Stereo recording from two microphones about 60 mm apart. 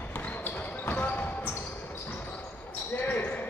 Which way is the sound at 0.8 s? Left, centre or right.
Left.